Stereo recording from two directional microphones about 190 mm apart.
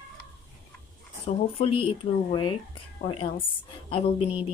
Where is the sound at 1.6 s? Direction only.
30° left (ahead or behind).